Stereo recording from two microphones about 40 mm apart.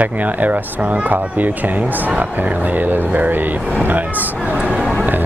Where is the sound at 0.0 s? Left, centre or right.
Right.